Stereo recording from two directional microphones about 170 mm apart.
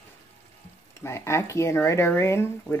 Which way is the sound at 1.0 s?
15° left (ahead or behind).